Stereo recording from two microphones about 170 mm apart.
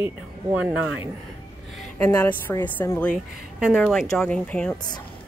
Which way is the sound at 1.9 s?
15° left (ahead or behind).